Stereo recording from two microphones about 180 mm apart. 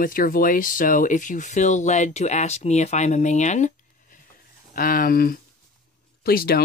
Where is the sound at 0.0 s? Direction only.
50° left (ahead or behind).